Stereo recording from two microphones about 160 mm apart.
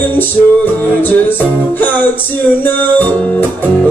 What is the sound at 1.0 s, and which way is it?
Music, 10° left (ahead or behind).